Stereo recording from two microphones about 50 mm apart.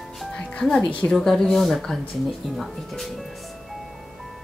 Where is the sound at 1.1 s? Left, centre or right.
Centre.